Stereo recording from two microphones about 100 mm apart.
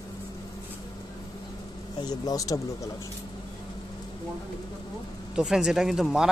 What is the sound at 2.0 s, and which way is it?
Speech, 40° left (ahead or behind).